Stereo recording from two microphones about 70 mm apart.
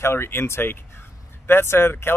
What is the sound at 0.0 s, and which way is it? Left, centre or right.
Speech, left.